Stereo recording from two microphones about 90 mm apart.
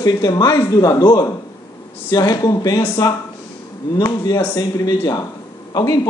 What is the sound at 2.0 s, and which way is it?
Speech, 45° left (ahead or behind).